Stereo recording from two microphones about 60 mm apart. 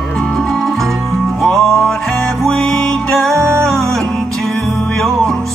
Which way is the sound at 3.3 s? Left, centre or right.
Right.